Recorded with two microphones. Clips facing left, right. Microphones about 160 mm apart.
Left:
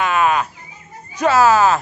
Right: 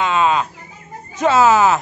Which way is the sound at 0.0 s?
20° right (ahead or behind).